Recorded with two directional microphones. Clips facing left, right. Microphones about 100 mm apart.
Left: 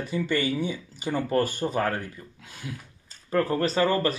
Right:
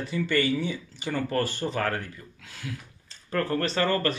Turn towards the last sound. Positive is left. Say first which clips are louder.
# left 2 dB
turn(degrees=10)  # may be behind; listen again after turning